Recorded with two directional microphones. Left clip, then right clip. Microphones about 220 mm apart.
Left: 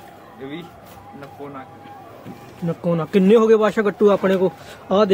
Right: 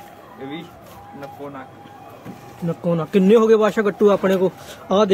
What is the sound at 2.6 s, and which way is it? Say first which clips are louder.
Speech: even; 10° left (ahead or behind).